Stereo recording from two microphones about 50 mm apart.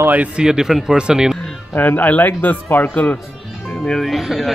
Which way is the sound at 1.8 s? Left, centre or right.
Left.